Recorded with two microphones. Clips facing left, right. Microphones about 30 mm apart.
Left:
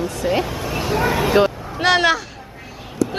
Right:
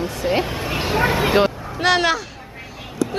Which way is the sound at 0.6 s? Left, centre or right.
Right.